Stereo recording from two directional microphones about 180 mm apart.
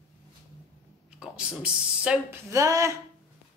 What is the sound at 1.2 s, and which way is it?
Speech, 5° right (ahead or behind).